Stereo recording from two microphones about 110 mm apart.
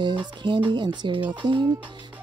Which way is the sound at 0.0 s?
45° right (ahead or behind).